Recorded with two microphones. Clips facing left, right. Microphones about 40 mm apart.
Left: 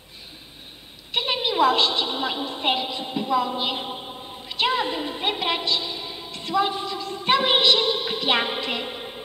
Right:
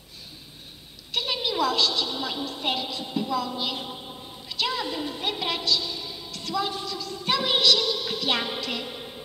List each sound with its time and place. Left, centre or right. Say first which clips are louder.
1.1 s a woman's voice: left 4 dB; left